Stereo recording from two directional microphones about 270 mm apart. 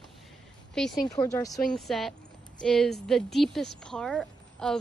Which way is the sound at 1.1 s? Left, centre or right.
Centre.